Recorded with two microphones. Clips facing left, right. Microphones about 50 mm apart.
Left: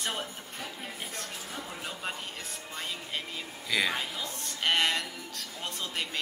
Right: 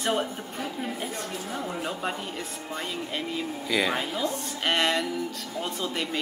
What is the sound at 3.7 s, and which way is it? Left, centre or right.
Speech, centre.